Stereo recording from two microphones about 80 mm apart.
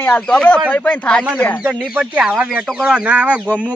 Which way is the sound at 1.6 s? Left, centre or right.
Centre.